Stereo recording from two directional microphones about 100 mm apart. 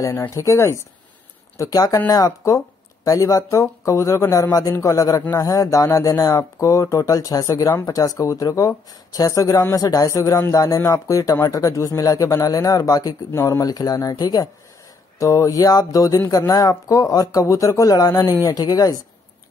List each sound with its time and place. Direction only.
0.3 s speech: 30° left (ahead or behind)
15.1 s speech: 30° left (ahead or behind)